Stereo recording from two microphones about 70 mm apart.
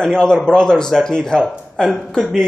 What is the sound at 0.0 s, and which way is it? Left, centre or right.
A man's voice, centre.